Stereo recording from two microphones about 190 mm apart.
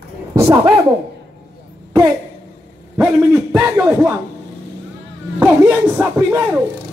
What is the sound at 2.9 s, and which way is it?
Speech, 15° right (ahead or behind).